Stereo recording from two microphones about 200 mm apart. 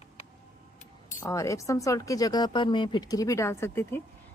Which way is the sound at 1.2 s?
15° left (ahead or behind).